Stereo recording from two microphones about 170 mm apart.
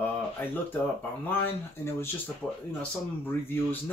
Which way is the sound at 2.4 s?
Centre (ahead or behind).